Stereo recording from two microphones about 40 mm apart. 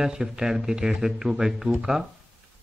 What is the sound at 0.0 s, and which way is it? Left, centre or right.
Speech, right.